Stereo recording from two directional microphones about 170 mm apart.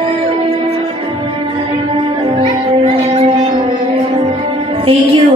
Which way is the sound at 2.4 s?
35° right (ahead or behind).